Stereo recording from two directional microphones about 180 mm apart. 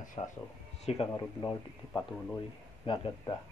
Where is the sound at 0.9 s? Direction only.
30° left (ahead or behind).